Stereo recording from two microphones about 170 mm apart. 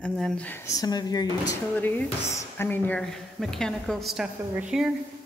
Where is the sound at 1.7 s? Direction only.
10° left (ahead or behind); by 4.9 s 5° right (ahead or behind).